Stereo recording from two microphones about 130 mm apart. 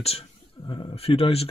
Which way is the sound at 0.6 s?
40° left (ahead or behind).